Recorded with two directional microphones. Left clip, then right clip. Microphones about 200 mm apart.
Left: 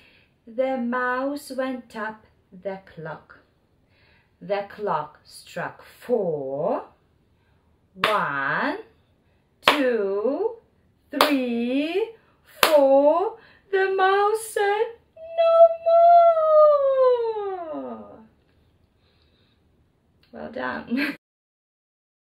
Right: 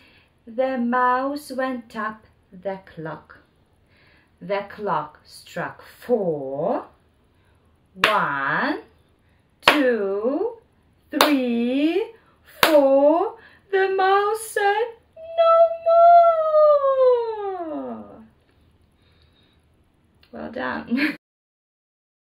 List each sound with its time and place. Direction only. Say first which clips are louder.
0.6 s speech: right 3 dB; centre (ahead or behind)
4.5 s speech: right 1 dB; centre (ahead or behind)
8.0 s speech: right 3 dB; centre (ahead or behind)
15.2 s a sound: even; centre (ahead or behind)
20.2 s speech: right 2 dB; 5° right (ahead or behind)